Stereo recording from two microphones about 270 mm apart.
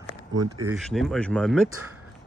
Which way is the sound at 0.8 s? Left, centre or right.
Centre.